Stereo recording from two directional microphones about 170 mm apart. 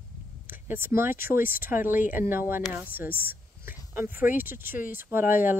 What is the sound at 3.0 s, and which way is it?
Speech, 60° left (ahead or behind).